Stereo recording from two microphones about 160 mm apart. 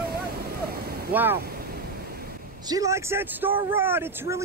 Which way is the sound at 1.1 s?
10° right (ahead or behind).